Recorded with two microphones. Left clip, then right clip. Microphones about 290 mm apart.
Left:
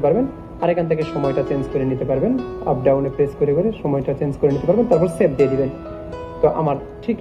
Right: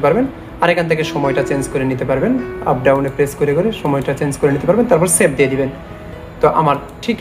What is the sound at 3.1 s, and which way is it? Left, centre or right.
Speech, centre.